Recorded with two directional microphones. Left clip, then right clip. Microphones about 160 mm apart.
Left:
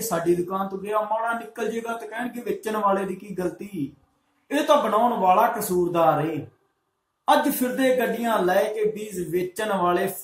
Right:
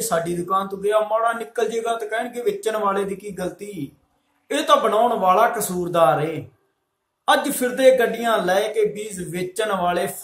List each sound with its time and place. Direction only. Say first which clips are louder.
0.1 s speech: right 2 dB; 20° right (ahead or behind)